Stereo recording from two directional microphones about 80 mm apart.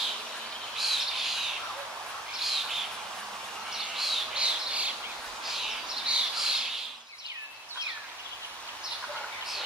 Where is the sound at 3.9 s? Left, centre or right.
Centre.